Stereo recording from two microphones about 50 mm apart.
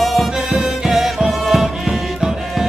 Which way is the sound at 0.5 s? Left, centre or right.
Centre.